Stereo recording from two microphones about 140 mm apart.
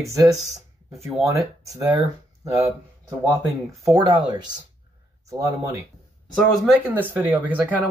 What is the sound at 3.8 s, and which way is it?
Speech, 25° right (ahead or behind).